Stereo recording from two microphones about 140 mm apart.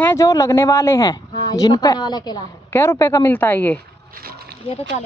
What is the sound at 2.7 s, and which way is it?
Speech, 20° left (ahead or behind).